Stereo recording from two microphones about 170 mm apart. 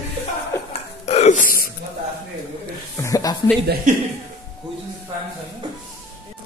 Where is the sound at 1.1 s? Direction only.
45° left (ahead or behind).